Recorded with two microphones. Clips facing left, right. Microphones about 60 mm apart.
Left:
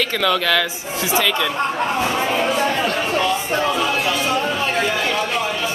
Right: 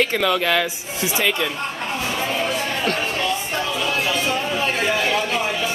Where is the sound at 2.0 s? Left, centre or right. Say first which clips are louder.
Left 1 dB; left.